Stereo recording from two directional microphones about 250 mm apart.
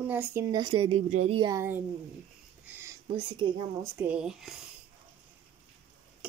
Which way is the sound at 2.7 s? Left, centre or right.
Centre.